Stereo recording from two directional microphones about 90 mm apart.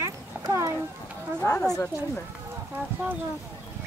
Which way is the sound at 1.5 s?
5° left (ahead or behind).